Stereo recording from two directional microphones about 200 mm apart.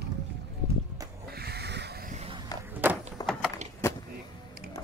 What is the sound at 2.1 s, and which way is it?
Skateboard, 30° right (ahead or behind).